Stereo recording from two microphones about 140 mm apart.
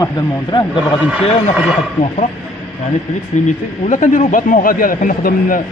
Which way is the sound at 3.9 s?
65° left (ahead or behind).